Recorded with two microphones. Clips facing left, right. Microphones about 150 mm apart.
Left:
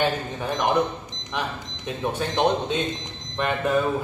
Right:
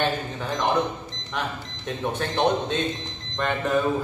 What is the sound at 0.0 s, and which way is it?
Speech, 10° left (ahead or behind).